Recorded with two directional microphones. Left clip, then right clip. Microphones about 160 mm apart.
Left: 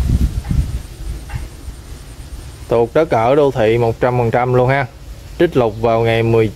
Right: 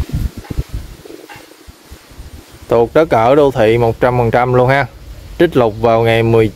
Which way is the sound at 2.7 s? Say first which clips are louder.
Right 3 dB; 25° right (ahead or behind).